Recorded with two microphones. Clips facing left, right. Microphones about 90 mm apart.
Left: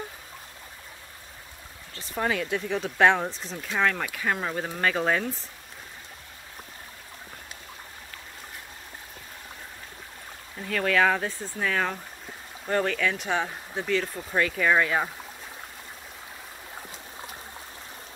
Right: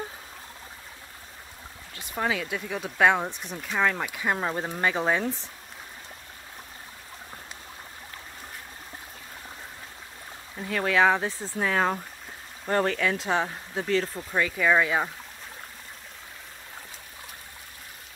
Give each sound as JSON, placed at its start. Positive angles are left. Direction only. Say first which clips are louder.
{"t": 2.0, "sound": "speech", "louder": "left 1 dB", "side_deg": -5}
{"t": 10.7, "sound": "speech", "louder": "right 1 dB", "side_deg": -20}
{"t": 14.3, "sound": "speech", "louder": "even", "side_deg": 0}